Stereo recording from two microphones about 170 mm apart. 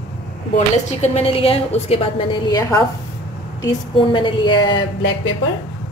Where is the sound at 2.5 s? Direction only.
20° left (ahead or behind).